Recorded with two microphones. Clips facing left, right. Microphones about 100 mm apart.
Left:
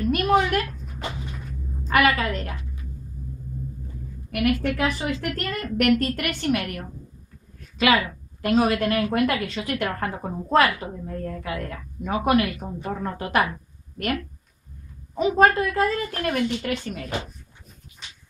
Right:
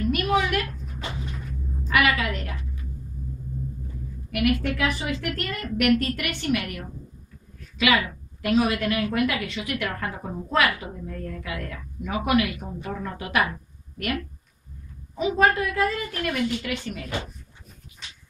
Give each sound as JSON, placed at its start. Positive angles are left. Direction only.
{"t": 0.1, "sound": "a sound", "side_deg": 40}
{"t": 1.9, "sound": "a woman's voice", "side_deg": 40}
{"t": 4.3, "sound": "a woman's voice", "side_deg": 40}
{"t": 15.1, "sound": "a woman's voice", "side_deg": 40}